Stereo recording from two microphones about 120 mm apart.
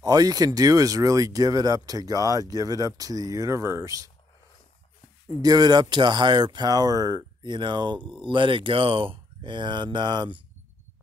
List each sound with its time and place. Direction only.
0.0 s speech: 30° right (ahead or behind)
5.4 s speech: 35° right (ahead or behind)